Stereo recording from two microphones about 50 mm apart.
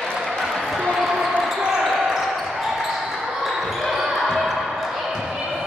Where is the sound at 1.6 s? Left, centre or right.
Centre.